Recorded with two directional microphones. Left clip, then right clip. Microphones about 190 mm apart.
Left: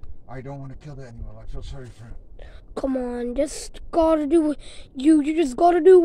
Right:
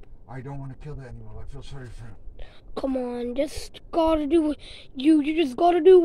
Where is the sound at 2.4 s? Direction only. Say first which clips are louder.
Left 2 dB; 10° left (ahead or behind).